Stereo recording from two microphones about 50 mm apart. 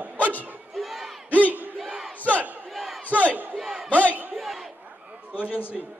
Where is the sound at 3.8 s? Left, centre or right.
Left.